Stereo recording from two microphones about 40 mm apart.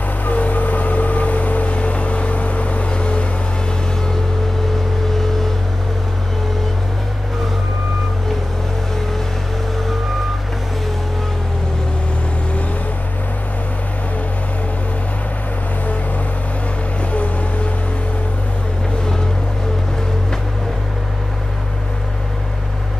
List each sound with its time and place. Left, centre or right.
0.2 s vehicle: left